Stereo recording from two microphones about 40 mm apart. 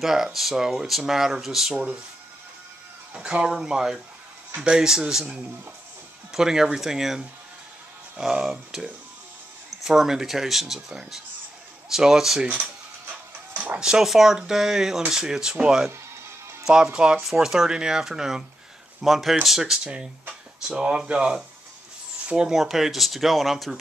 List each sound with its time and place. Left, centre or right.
0.0 s speech: centre
3.2 s speech: centre
6.3 s speech: centre
8.2 s speech: centre
13.7 s speech: centre
19.9 s speech: right
22.2 s a sound: right
22.5 s speech: centre